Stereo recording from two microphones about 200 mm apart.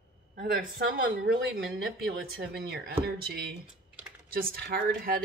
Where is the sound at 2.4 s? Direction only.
55° right (ahead or behind).